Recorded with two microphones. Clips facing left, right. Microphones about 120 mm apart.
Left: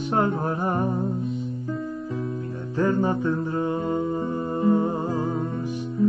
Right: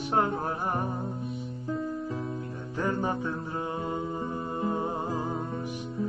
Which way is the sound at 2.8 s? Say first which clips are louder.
Left 7 dB; 10° right (ahead or behind).